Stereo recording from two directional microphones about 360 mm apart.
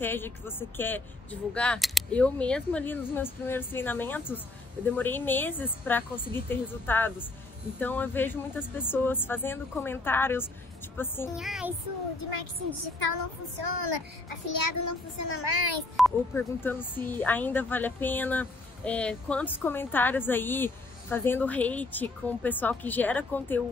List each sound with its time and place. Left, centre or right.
0.0 s speech: centre
13.0 s speech: left
13.6 s a woman's voice: right
14.5 s a child's voice: left
15.4 s a child's voice: right
16.0 s speech: centre